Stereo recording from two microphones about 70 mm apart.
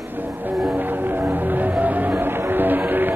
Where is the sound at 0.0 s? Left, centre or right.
Right.